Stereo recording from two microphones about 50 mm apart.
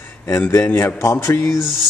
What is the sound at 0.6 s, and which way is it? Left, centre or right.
Speech, left.